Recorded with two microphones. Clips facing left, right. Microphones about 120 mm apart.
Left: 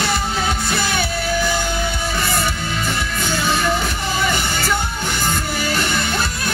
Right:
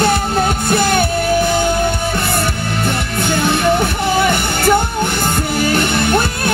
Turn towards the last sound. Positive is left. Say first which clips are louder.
# right 6 dB
turn(degrees=-55)  # may be behind; listen again after turning